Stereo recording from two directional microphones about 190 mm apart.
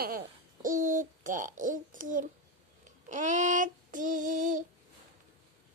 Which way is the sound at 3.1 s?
40° right (ahead or behind).